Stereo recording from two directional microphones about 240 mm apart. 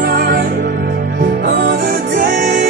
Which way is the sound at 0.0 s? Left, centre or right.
Right.